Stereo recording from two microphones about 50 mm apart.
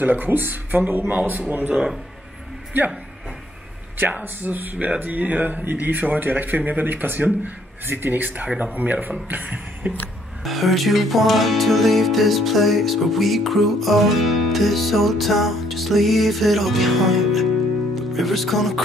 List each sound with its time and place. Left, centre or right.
0.0 s speech: right
4.2 s speech: right
9.3 s a sound: right
10.4 s music: centre